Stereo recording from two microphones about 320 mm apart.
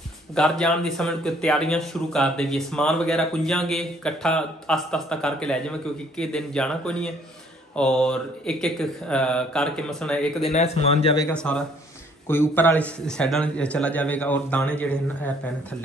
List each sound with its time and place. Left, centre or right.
0.3 s speech: centre
10.5 s speech: centre